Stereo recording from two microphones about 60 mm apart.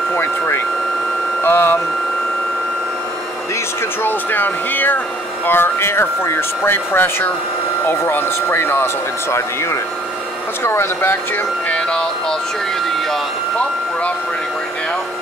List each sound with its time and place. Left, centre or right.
0.1 s a sound: left
4.0 s speech: left
11.7 s music: centre